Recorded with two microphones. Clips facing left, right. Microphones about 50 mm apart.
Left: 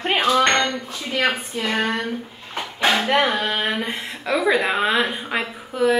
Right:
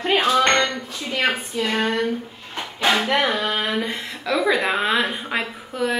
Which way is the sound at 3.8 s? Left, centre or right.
Left.